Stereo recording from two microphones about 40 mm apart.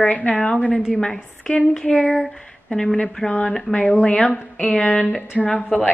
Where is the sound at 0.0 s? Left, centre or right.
Left.